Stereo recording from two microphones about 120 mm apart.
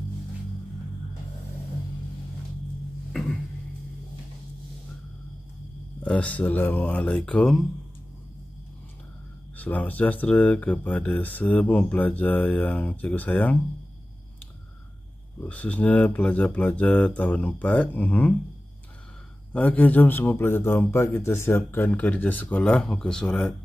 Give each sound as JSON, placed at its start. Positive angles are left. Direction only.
{"t": 6.0, "sound": "speech", "side_deg": 10}
{"t": 9.6, "sound": "speech", "side_deg": 15}
{"t": 15.4, "sound": "speech", "side_deg": 10}
{"t": 19.5, "sound": "speech", "side_deg": 10}